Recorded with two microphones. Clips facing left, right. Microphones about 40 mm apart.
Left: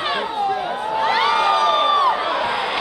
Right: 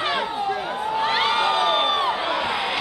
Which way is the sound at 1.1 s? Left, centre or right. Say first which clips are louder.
Left 4 dB; right.